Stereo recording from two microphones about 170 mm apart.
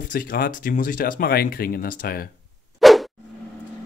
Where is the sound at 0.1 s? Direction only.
55° left (ahead or behind).